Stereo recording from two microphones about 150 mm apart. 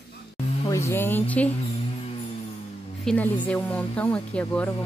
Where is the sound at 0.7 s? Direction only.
20° left (ahead or behind).